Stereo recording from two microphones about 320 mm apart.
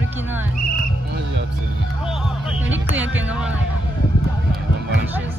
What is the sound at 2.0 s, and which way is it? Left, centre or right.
Music, centre.